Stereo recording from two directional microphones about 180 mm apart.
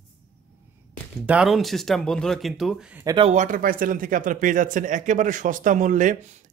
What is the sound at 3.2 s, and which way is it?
Speech, 40° right (ahead or behind).